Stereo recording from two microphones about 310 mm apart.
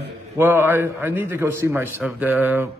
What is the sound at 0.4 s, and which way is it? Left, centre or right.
A man's voice, centre.